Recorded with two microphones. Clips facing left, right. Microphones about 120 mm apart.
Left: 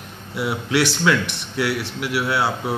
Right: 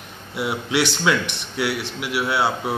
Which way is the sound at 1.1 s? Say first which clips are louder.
Left 1 dB; 10° right (ahead or behind).